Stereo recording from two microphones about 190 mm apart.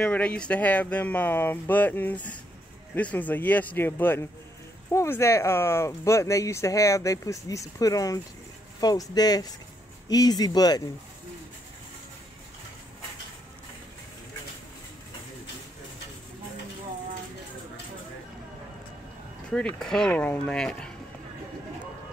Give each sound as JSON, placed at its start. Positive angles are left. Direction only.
{"t": 0.0, "sound": "speech", "side_deg": 5}
{"t": 19.5, "sound": "speech", "side_deg": 5}